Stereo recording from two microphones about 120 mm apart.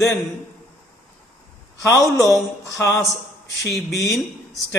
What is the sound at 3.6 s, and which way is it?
A man's voice, centre (ahead or behind).